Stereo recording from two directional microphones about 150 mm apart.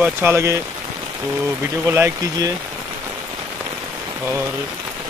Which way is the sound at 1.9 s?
15° right (ahead or behind).